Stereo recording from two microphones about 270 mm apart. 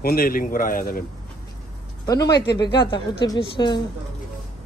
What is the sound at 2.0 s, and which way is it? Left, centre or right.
Speech, centre.